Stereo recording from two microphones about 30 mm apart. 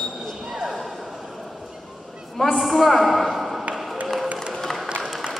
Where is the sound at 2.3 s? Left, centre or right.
Centre.